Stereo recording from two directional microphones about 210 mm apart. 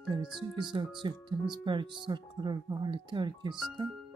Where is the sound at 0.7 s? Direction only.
20° right (ahead or behind).